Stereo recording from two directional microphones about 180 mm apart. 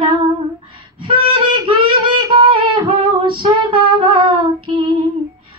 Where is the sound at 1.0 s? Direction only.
30° right (ahead or behind).